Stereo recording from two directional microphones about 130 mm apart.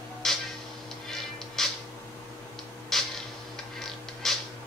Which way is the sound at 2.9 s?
5° left (ahead or behind).